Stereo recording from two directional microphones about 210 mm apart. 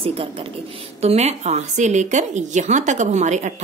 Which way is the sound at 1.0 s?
30° right (ahead or behind).